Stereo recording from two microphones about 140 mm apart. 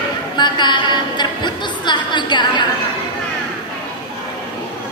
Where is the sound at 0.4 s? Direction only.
35° left (ahead or behind).